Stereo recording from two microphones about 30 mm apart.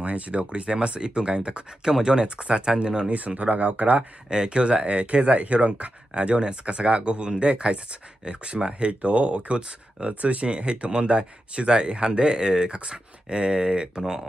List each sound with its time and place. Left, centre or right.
0.0 s speech: right
2.2 s speech: right
3.4 s speech: right
4.3 s speech: right
6.4 s speech: right